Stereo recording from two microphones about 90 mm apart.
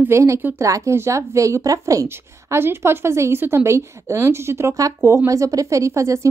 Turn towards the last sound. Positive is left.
turn(degrees=-35)  # may be behind; listen again after turning